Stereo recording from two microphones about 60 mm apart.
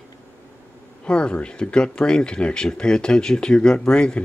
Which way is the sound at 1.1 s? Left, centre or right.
Centre.